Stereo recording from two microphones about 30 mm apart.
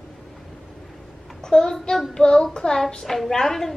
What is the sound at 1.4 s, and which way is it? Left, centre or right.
Child singing, left.